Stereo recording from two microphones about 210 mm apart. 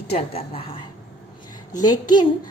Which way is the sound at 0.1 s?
30° left (ahead or behind).